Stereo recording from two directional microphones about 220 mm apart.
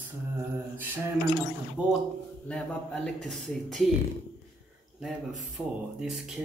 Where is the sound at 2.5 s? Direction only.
5° left (ahead or behind).